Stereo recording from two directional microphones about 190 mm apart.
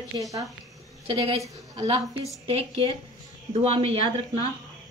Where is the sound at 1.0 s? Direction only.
30° right (ahead or behind).